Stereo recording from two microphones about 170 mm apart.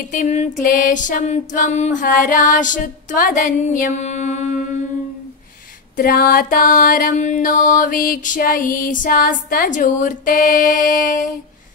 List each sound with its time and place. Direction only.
0.1 s female singing: 45° left (ahead or behind)
5.9 s music: 60° left (ahead or behind)
11.0 s female singing: 50° left (ahead or behind)